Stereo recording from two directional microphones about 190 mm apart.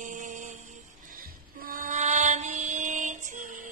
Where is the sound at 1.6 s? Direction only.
45° right (ahead or behind).